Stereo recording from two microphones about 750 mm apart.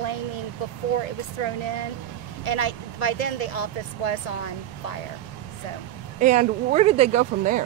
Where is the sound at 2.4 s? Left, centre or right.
Left.